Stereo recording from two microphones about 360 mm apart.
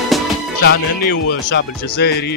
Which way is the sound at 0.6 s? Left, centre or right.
Left.